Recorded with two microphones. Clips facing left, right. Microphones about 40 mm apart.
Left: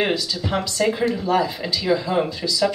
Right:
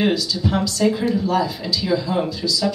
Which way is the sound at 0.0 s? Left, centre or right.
Left.